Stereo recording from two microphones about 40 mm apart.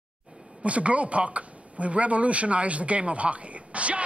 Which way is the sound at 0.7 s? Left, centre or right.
Right.